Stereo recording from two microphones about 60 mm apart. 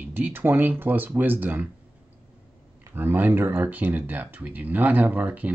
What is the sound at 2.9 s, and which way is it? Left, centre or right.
Speech, right.